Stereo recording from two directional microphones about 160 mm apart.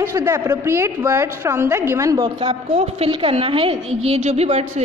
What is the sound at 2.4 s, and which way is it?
A woman's voice, 40° right (ahead or behind).